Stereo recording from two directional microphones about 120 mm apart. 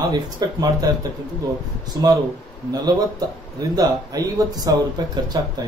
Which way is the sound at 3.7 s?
30° right (ahead or behind).